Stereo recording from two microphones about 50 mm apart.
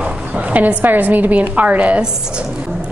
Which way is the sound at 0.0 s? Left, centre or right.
Right.